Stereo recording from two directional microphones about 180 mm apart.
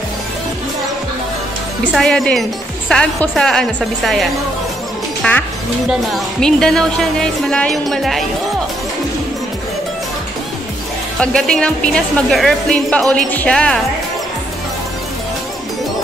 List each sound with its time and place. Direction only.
1.9 s speech: centre (ahead or behind)
11.1 s speech: 5° left (ahead or behind)